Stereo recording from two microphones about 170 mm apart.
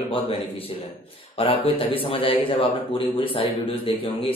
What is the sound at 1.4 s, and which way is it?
Speech, 30° left (ahead or behind).